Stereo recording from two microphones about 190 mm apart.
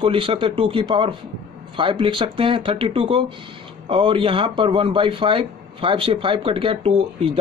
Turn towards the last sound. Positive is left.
turn(degrees=-30)  # may be behind; listen again after turning